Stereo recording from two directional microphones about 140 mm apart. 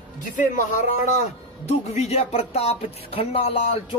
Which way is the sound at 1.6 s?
50° left (ahead or behind).